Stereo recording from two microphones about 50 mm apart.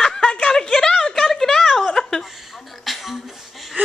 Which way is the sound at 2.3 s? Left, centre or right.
Centre.